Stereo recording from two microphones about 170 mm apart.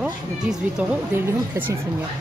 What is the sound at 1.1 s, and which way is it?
Speech, 15° right (ahead or behind).